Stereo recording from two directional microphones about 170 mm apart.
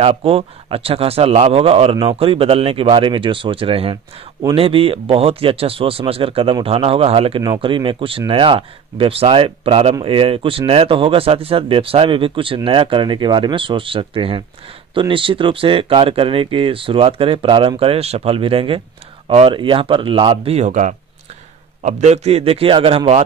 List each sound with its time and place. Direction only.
0.0 s a man's voice: 35° right (ahead or behind)